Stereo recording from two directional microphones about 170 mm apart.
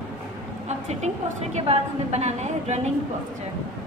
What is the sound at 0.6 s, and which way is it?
A woman's voice, 40° right (ahead or behind).